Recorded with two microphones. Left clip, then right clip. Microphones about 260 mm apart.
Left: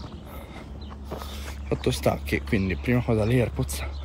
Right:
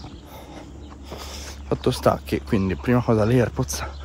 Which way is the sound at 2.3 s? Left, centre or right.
Centre.